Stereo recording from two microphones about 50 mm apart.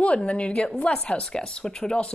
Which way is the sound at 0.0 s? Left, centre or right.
Left.